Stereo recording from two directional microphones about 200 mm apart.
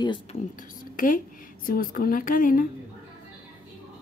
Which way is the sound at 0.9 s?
45° left (ahead or behind).